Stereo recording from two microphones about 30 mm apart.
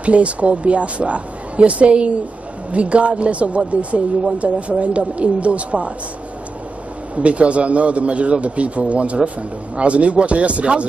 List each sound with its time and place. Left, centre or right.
0.0 s a woman's voice: right
7.2 s a woman's voice: right